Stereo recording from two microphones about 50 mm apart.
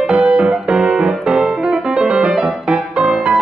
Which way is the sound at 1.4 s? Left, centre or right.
Centre.